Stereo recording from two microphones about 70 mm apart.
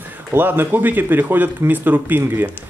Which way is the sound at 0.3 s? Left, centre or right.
Right.